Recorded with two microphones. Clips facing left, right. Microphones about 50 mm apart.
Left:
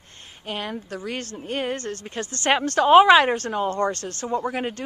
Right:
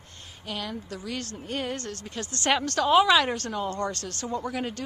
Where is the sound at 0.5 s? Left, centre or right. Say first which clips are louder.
Left 4 dB; left.